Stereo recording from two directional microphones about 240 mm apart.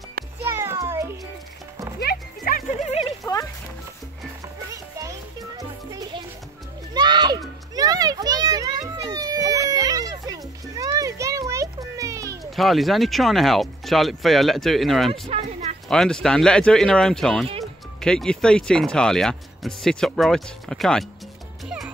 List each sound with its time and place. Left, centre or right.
0.4 s music: centre
2.0 s music: left
4.6 s music: centre
6.9 s children playing: centre
12.4 s speech: centre
15.2 s a sound: right
15.9 s speech: centre
21.6 s music: centre